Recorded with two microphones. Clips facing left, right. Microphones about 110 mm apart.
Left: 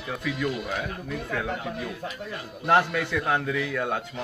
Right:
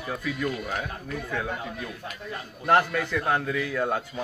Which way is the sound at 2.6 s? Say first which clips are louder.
Even; centre (ahead or behind).